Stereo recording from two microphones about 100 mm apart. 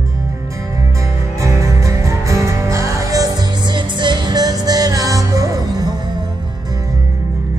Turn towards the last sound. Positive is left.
turn(degrees=-40)  # may be behind; listen again after turning